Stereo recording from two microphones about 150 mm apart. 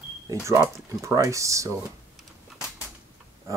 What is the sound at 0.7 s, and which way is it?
Speech, 20° right (ahead or behind).